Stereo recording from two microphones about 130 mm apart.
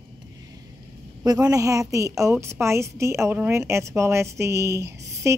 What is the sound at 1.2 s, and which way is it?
A woman's voice, 30° right (ahead or behind).